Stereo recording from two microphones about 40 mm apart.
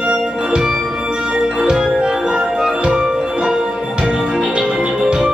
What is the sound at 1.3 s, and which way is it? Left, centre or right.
Music, centre.